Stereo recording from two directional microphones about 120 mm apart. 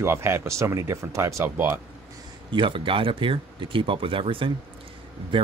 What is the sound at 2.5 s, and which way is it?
Speech, 45° right (ahead or behind).